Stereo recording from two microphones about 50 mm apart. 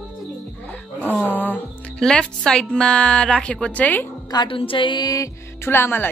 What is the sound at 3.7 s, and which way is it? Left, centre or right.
Speech, left.